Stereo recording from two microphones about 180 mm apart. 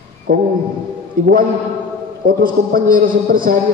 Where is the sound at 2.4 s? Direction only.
50° right (ahead or behind).